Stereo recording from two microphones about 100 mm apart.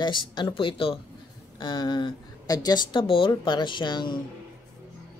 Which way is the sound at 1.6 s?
50° left (ahead or behind).